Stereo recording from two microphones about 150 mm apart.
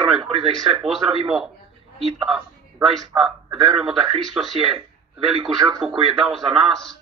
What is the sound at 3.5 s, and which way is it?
Speech, 35° right (ahead or behind).